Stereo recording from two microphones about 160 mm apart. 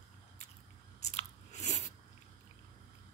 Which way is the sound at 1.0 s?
45° left (ahead or behind).